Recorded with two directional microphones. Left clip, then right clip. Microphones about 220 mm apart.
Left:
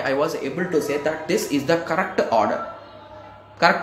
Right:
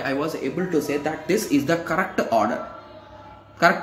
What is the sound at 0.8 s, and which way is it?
Speech, 10° right (ahead or behind).